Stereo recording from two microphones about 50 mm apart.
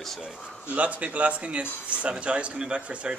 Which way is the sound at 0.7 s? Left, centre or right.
Right.